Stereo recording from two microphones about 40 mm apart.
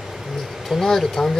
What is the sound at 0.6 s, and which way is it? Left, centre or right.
Speech, centre.